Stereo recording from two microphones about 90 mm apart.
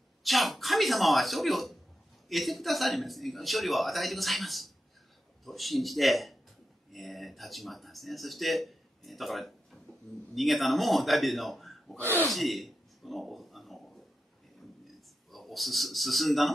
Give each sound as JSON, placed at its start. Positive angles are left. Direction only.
{"t": 0.2, "sound": "a man's voice", "side_deg": 0}
{"t": 12.3, "sound": "a sound", "side_deg": 0}
{"t": 15.3, "sound": "speech", "side_deg": 0}